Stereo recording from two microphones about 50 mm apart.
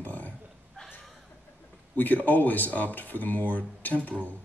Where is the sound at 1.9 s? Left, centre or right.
Left.